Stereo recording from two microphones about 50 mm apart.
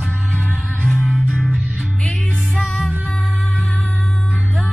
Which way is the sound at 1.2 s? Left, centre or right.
Centre.